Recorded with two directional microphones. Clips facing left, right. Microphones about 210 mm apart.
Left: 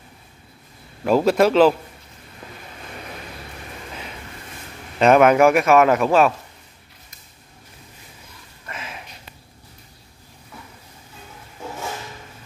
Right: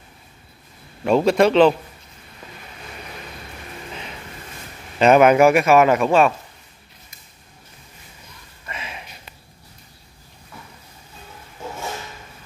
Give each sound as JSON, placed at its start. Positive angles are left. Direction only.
{"t": 1.0, "sound": "a man's voice", "side_deg": 5}
{"t": 4.9, "sound": "a man's voice", "side_deg": 0}
{"t": 8.6, "sound": "a sound", "side_deg": 0}